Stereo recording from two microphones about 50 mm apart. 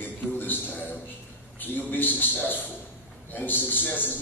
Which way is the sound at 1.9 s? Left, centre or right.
Left.